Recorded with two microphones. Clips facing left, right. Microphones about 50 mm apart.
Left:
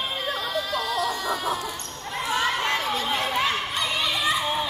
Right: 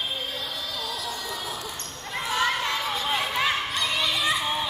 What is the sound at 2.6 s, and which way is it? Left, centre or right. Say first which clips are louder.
Chatter: left 2 dB; left.